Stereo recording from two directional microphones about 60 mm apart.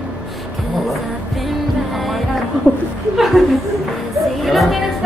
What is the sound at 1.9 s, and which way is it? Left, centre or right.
Music, centre.